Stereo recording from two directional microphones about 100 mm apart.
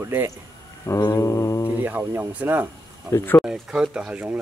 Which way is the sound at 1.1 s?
30° left (ahead or behind).